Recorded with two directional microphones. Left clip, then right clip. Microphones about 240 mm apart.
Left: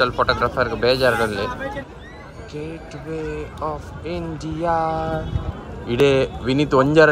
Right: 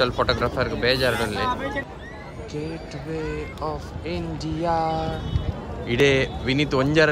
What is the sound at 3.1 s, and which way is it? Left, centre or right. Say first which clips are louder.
Speech: left 2 dB; centre.